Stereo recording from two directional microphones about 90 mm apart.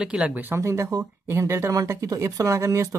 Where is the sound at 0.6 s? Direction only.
30° right (ahead or behind).